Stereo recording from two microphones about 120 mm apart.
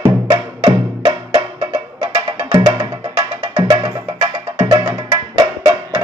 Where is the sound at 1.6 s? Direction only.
35° right (ahead or behind).